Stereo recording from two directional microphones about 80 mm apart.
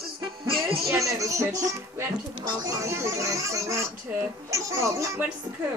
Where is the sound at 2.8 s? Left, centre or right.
Right.